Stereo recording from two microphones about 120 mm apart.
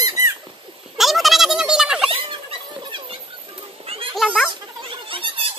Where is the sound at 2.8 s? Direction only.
45° right (ahead or behind).